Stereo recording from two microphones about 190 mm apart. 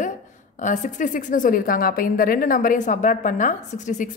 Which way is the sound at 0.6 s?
40° left (ahead or behind).